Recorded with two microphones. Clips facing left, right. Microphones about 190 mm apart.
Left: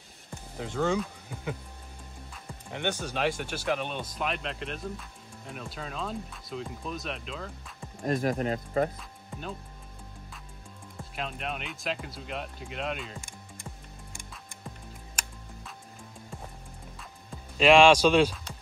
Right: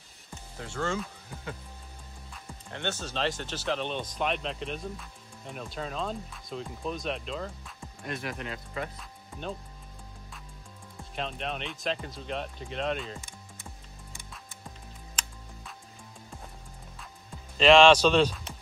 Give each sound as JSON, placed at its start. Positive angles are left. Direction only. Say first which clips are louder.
{"t": 0.6, "sound": "speech", "louder": "left 4 dB", "side_deg": 15}
{"t": 2.7, "sound": "speech", "louder": "left 3 dB", "side_deg": 15}
{"t": 8.0, "sound": "speech", "louder": "left 9 dB", "side_deg": 40}
{"t": 11.1, "sound": "speech", "louder": "right 1 dB", "side_deg": 5}
{"t": 17.6, "sound": "speech", "louder": "even", "side_deg": 10}